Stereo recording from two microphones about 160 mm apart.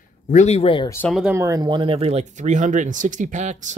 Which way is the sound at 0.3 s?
45° left (ahead or behind).